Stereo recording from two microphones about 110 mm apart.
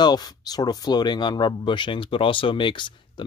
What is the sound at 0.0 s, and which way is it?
Speech, 40° left (ahead or behind).